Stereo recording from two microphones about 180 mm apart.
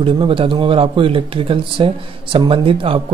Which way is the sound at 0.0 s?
30° right (ahead or behind).